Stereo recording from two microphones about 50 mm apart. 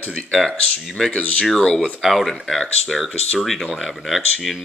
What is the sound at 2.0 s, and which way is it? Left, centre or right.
Speech, centre.